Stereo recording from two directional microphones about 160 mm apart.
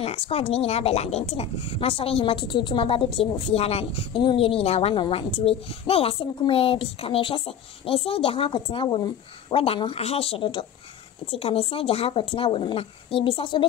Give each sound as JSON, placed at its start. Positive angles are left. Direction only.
{"t": 0.0, "sound": "speech", "side_deg": 40}